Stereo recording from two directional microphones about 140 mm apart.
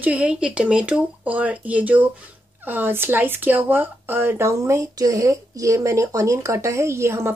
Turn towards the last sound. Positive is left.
turn(degrees=-20)  # may be behind; listen again after turning